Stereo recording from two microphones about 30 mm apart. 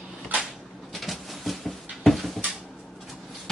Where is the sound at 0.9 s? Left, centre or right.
Centre.